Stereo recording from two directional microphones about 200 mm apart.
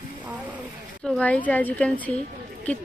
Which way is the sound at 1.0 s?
5° left (ahead or behind).